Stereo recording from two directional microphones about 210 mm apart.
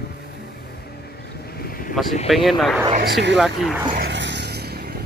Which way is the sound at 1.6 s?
45° left (ahead or behind).